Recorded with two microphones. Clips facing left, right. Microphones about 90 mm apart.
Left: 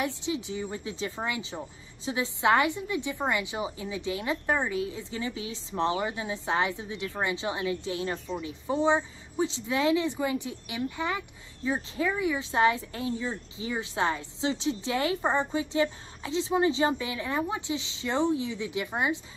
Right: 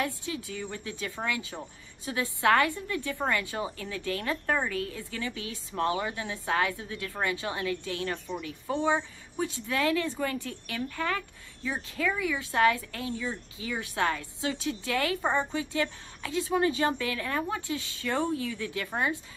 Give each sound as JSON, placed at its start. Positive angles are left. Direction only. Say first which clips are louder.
{"t": 0.0, "sound": "speech", "louder": "left 2 dB", "side_deg": 20}